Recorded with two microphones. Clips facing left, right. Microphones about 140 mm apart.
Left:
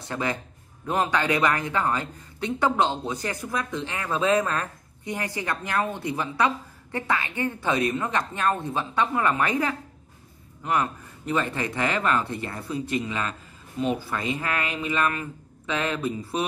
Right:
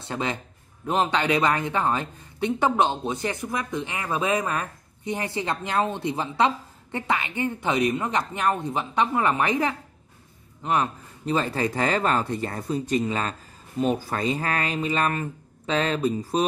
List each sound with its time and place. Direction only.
0.0 s speech: 25° right (ahead or behind)